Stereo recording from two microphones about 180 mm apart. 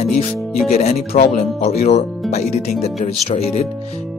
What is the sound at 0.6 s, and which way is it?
Speech, 35° left (ahead or behind).